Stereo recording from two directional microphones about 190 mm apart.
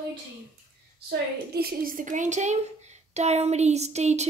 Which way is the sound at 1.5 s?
50° right (ahead or behind).